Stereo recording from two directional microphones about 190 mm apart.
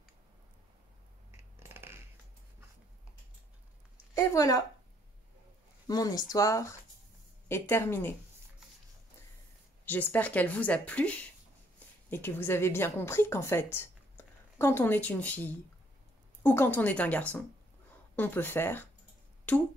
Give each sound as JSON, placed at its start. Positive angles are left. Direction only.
{"t": 1.3, "sound": "a sound", "side_deg": -10}
{"t": 4.1, "sound": "speech", "side_deg": 15}
{"t": 5.9, "sound": "speech", "side_deg": 20}
{"t": 9.8, "sound": "a woman's voice", "side_deg": 10}